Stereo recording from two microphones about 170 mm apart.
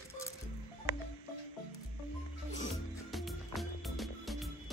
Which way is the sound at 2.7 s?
Centre (ahead or behind).